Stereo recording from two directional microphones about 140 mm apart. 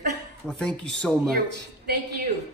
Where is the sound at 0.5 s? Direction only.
5° left (ahead or behind).